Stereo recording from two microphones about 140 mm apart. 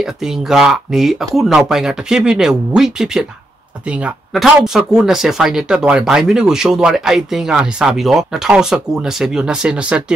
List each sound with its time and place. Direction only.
0.0 s speech: 5° right (ahead or behind)